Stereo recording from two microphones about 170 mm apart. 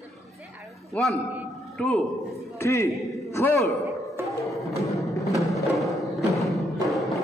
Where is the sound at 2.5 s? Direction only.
15° left (ahead or behind).